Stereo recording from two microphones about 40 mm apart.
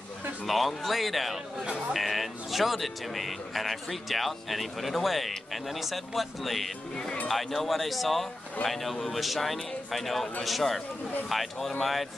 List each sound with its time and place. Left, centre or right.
0.5 s speech: centre
1.6 s speech: centre
2.0 s speech: centre